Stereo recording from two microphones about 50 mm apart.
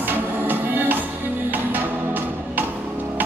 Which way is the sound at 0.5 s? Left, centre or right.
Right.